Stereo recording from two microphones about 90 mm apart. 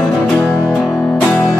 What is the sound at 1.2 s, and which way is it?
Music, 20° left (ahead or behind).